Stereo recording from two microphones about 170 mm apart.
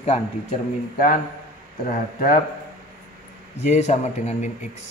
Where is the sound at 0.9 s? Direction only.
55° left (ahead or behind).